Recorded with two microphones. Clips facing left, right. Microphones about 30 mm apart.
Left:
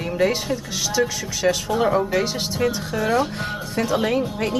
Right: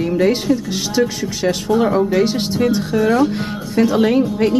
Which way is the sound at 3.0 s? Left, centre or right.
Centre.